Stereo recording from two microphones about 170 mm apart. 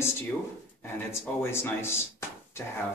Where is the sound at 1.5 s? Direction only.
15° left (ahead or behind).